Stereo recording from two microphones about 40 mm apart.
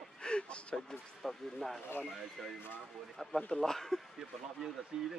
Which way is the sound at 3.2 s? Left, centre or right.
Centre.